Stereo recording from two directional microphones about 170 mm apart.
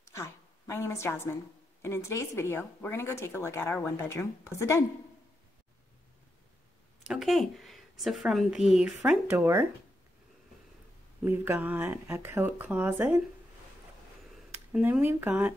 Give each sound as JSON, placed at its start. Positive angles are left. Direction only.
{"t": 0.0, "sound": "a sound", "side_deg": 15}
{"t": 1.8, "sound": "speech", "side_deg": 15}
{"t": 7.1, "sound": "speech", "side_deg": 0}
{"t": 9.4, "sound": "speech", "side_deg": -15}
{"t": 11.2, "sound": "speech", "side_deg": -15}
{"t": 14.7, "sound": "speech", "side_deg": -10}